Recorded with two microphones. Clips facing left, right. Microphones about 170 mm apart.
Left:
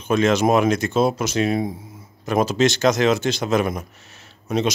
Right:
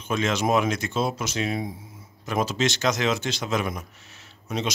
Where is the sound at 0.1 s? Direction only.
55° left (ahead or behind).